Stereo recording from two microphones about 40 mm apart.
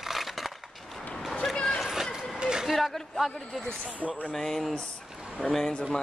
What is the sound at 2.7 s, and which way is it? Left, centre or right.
Speech, centre.